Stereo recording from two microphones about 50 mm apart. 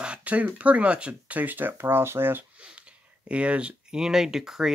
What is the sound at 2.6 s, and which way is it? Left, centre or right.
Speech, right.